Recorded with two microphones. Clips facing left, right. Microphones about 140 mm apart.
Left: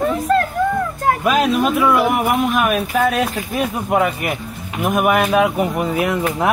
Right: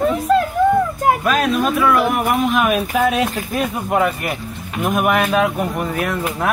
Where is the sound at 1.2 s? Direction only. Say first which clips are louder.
Left 1 dB; 15° left (ahead or behind).